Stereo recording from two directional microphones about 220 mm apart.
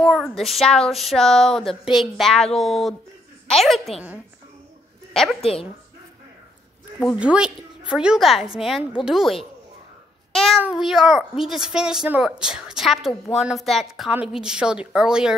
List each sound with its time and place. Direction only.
0.0 s a child's voice: centre (ahead or behind)
5.4 s a woman's voice: 25° left (ahead or behind)
7.0 s a child's voice: centre (ahead or behind)